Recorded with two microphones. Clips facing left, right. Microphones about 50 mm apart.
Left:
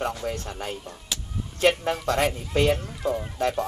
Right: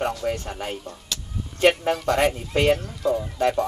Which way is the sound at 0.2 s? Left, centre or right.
Centre.